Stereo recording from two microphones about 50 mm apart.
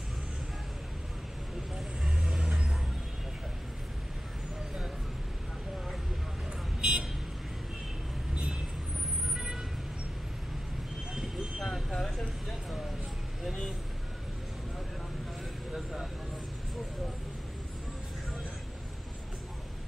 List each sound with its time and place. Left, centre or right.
2.0 s vehicle: centre
6.8 s vehicle: centre
9.3 s vehicle: centre
11.1 s vehicle: centre
15.7 s vehicle: centre